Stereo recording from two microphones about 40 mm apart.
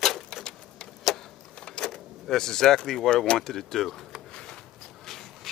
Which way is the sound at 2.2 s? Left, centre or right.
Centre.